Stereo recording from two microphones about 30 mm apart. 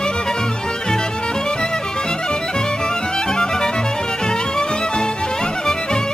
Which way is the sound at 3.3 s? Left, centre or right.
Left.